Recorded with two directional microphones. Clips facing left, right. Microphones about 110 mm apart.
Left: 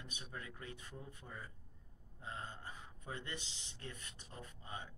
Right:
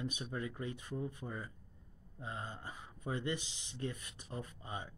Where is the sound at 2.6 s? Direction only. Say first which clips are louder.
Right 4 dB; 20° right (ahead or behind).